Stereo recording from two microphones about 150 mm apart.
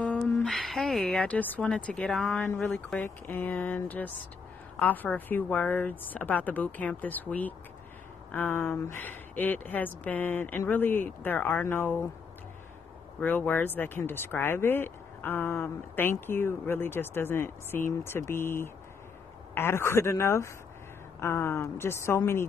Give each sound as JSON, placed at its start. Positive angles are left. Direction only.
{"t": 0.2, "sound": "speech", "side_deg": 0}
{"t": 13.2, "sound": "speech", "side_deg": 10}